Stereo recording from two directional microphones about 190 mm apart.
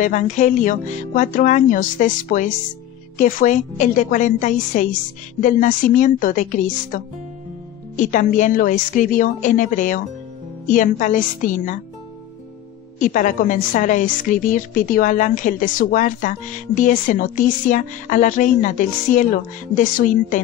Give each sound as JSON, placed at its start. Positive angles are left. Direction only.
{"t": 0.0, "sound": "a woman's voice", "side_deg": 40}
{"t": 13.0, "sound": "a woman's voice", "side_deg": 45}